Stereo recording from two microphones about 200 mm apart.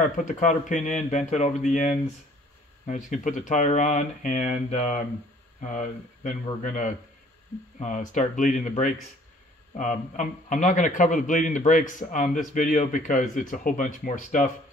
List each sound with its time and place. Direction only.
0.2 s a man's voice: 40° left (ahead or behind)